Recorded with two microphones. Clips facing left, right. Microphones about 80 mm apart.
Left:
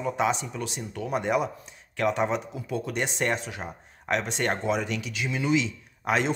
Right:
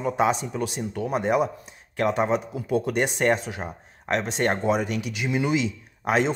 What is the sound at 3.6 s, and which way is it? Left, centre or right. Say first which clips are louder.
Speech: right 3 dB; right.